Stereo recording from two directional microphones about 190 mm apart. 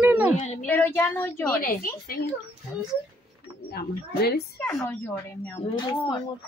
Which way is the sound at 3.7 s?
55° left (ahead or behind).